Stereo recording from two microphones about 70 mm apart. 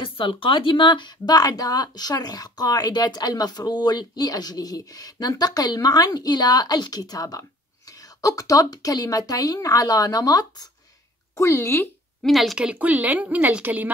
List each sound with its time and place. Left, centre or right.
0.9 s speech: left
11.3 s speech: left
12.2 s speech: centre
12.5 s a woman's voice: centre